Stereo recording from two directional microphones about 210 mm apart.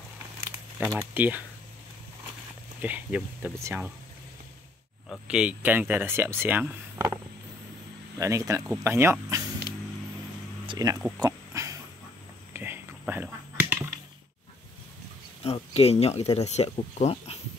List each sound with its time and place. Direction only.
0.9 s speech: 10° right (ahead or behind)
2.8 s speech: 10° right (ahead or behind)
5.1 s speech: 5° right (ahead or behind)
8.2 s speech: 15° right (ahead or behind)
10.7 s speech: 15° right (ahead or behind)
11.1 s a sound: 15° right (ahead or behind)
15.4 s speech: 30° left (ahead or behind)